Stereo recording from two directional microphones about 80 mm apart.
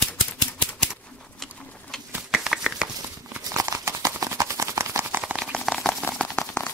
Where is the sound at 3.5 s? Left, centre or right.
Right.